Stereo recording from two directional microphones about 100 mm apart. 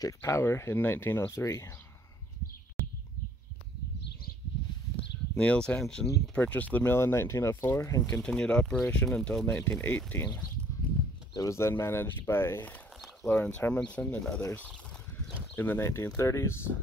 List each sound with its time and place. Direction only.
0.2 s speech: 25° left (ahead or behind)
4.9 s a sound: 15° left (ahead or behind)
5.8 s speech: 10° left (ahead or behind); by 8.2 s 30° left (ahead or behind)
8.2 s speech: 10° left (ahead or behind)
9.5 s speech: 20° left (ahead or behind)
11.3 s speech: 30° left (ahead or behind)